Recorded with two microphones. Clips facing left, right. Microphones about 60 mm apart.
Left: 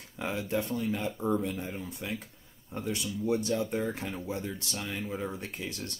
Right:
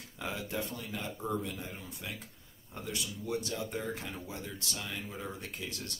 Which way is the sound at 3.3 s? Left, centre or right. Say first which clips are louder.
Left 7 dB; left.